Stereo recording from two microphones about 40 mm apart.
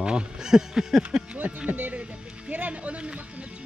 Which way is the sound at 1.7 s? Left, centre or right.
Right.